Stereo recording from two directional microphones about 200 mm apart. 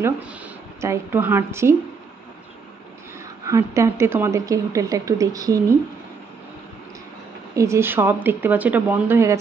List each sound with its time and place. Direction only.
0.7 s a woman's voice: 10° right (ahead or behind)
3.4 s a woman's voice: 15° right (ahead or behind)
7.5 s a woman's voice: 15° right (ahead or behind)